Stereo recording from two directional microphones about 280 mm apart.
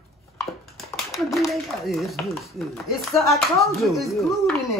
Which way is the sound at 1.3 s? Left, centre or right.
Centre.